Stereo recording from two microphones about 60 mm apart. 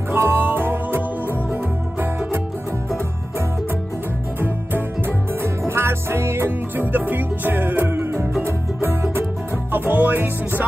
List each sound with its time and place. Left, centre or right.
0.1 s music: right
4.4 s music: right
9.7 s music: right